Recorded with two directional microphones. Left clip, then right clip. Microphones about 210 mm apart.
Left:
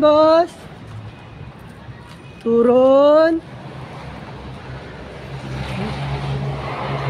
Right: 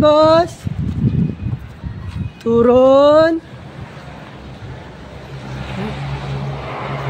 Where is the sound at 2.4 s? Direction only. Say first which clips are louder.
Right 2 dB; 15° right (ahead or behind).